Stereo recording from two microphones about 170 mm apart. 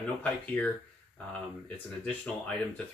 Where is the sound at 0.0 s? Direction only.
5° left (ahead or behind).